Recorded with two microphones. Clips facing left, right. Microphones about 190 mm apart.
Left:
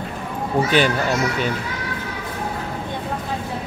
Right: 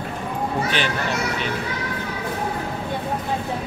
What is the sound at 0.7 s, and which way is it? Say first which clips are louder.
Speech: left 6 dB; 45° left (ahead or behind).